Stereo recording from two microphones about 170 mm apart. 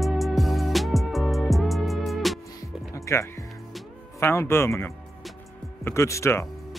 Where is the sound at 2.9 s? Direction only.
15° left (ahead or behind).